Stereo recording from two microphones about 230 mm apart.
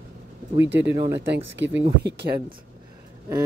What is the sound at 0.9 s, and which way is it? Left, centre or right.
Speech, centre.